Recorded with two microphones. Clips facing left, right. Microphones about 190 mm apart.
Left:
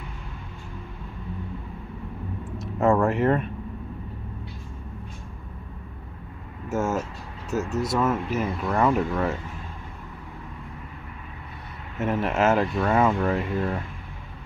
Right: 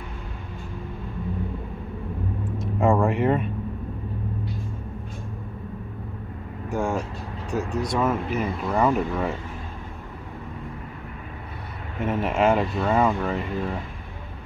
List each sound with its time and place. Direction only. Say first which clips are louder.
2.6 s vehicle: even; centre (ahead or behind)
3.1 s speech: even; centre (ahead or behind)
6.7 s speech: even; 5° left (ahead or behind)
12.1 s speech: right 1 dB; centre (ahead or behind)